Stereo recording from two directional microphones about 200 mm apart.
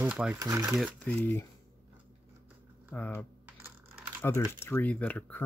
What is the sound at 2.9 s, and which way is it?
Speech, 5° left (ahead or behind).